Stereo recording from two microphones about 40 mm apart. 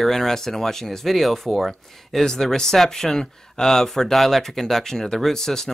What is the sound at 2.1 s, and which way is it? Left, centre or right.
Speech, centre.